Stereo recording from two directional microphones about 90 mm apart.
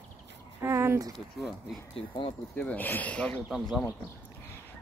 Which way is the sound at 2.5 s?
15° left (ahead or behind).